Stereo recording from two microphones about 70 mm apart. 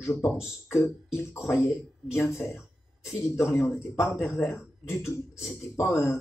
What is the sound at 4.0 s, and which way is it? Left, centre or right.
A man's voice, left.